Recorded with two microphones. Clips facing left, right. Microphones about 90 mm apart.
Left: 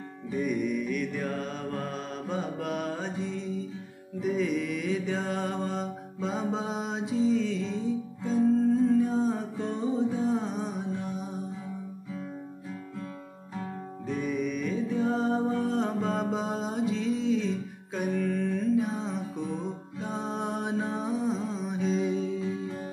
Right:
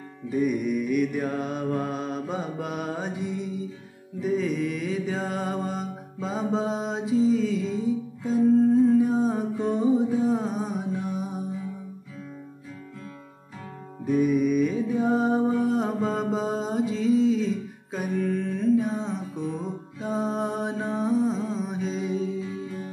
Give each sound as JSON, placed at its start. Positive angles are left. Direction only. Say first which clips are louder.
{"t": 0.3, "sound": "mantra", "louder": "right 4 dB", "side_deg": -5}
{"t": 4.2, "sound": "music", "louder": "right 2 dB", "side_deg": 0}
{"t": 14.0, "sound": "music", "louder": "right 9 dB", "side_deg": -10}